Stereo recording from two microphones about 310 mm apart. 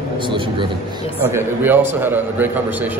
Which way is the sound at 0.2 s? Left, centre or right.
Centre.